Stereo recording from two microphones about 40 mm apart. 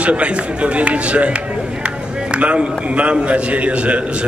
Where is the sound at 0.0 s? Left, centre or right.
Right.